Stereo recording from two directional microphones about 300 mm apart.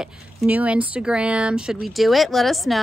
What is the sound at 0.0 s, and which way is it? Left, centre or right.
Speech, centre.